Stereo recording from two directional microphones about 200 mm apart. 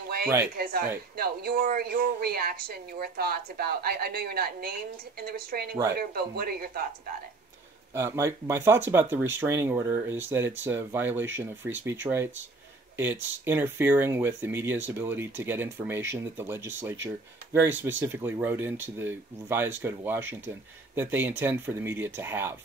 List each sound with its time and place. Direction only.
0.6 s a woman's voice: 45° right (ahead or behind)
7.9 s speech: 15° right (ahead or behind)